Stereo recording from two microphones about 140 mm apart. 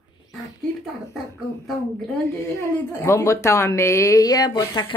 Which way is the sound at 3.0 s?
20° left (ahead or behind).